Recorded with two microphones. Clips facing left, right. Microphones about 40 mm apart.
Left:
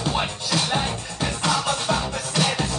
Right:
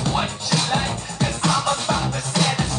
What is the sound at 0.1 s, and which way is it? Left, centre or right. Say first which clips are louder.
Music: right 2 dB; centre.